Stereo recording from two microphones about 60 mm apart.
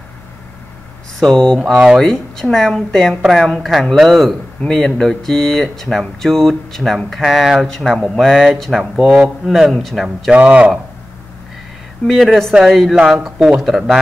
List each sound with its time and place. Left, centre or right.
1.2 s speech: centre
7.6 s speech: centre
7.9 s speech: centre
10.3 s speech: right
12.1 s speech: centre